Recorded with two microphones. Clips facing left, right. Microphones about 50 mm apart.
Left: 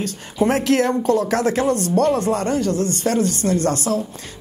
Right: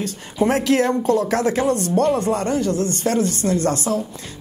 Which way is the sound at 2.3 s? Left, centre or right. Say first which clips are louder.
Even; left.